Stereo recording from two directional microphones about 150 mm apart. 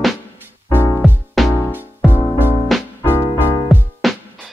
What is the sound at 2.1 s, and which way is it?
Music, 15° right (ahead or behind).